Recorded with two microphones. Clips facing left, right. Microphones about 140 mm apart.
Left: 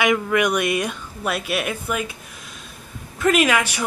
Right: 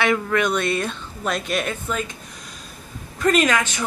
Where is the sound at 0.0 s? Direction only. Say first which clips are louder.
Left 1 dB; 10° left (ahead or behind).